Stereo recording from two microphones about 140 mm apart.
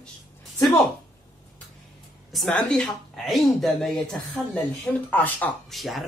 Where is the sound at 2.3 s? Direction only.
5° left (ahead or behind).